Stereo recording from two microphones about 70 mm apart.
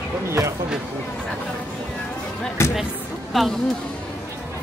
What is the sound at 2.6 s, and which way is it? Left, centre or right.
Speech, left.